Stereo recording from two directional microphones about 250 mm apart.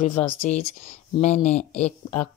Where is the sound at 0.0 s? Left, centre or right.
Left.